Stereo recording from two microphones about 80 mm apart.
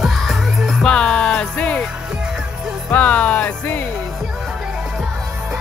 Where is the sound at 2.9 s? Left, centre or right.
Centre.